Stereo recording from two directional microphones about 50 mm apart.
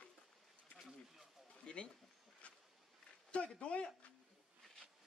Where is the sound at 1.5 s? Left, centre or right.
Left.